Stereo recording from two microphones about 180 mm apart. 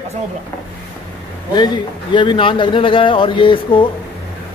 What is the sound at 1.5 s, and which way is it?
Speech, 25° left (ahead or behind).